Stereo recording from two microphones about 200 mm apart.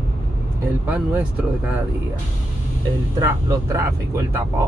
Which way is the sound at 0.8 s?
10° right (ahead or behind).